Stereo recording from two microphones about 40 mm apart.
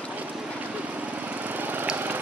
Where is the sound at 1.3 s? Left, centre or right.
Right.